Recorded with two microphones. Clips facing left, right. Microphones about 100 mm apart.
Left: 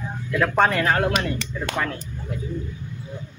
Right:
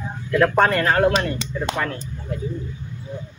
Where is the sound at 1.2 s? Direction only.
20° right (ahead or behind).